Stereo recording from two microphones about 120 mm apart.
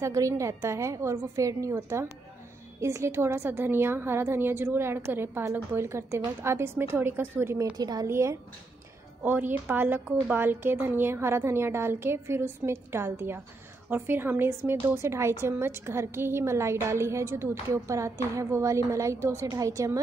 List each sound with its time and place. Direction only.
0.0 s a woman's voice: 25° right (ahead or behind)
7.7 s a woman's voice: 30° right (ahead or behind)